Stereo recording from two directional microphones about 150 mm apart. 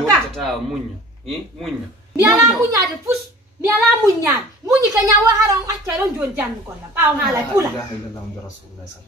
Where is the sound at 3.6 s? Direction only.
20° right (ahead or behind).